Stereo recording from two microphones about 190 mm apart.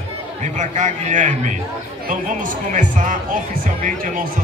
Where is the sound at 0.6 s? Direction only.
40° right (ahead or behind).